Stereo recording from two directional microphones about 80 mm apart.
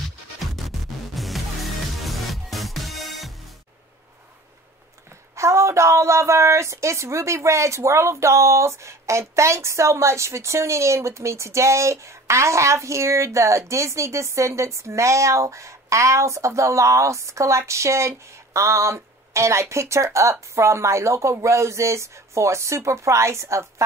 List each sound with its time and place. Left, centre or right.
1.1 s music: centre
5.3 s speech: right